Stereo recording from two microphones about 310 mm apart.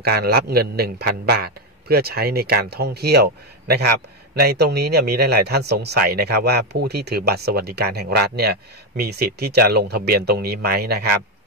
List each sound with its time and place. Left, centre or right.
0.0 s speech: right